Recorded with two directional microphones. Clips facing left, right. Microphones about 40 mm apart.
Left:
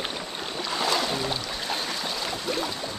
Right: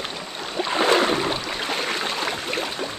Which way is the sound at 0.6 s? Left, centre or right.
Right.